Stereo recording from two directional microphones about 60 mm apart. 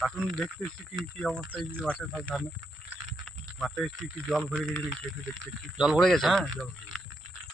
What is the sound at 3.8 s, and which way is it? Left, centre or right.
Speech, centre.